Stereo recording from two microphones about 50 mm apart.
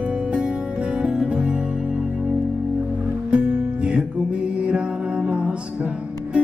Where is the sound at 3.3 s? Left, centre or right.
Right.